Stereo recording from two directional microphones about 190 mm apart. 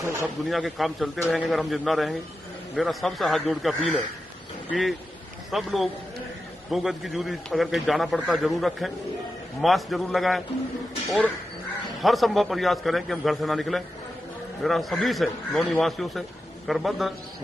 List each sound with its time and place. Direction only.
0.0 s speech: 15° right (ahead or behind)
0.5 s a man's voice: centre (ahead or behind)
12.0 s a man's voice: centre (ahead or behind)